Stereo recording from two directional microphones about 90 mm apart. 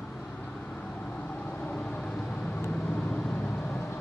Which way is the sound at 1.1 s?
15° left (ahead or behind).